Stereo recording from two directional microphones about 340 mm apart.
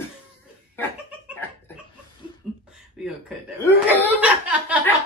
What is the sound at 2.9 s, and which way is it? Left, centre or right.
Laughter, centre.